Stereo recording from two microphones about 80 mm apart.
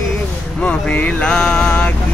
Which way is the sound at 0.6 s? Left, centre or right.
Centre.